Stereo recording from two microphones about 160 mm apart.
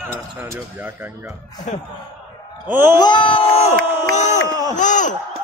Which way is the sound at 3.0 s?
30° left (ahead or behind).